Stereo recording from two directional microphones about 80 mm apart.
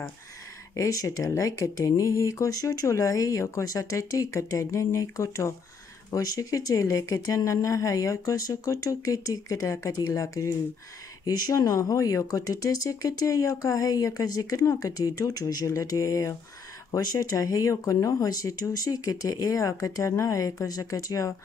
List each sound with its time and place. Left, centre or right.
0.7 s speech: left